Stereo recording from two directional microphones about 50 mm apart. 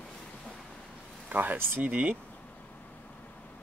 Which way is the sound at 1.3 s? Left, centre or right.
Right.